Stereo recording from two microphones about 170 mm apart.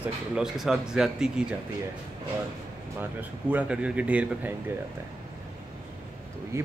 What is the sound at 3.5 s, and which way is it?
Speech, 10° right (ahead or behind).